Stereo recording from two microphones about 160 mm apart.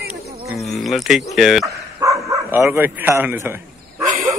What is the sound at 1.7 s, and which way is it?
Bow-wow, 20° right (ahead or behind).